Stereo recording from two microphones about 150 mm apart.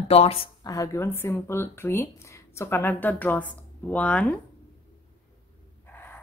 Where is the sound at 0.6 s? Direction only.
20° left (ahead or behind).